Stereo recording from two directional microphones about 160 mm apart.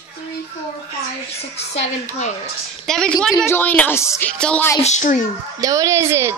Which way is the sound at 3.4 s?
10° left (ahead or behind).